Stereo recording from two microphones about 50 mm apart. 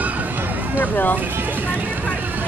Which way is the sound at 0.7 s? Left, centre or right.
Left.